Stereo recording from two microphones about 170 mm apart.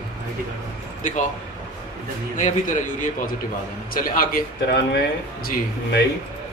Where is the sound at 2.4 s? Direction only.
50° left (ahead or behind).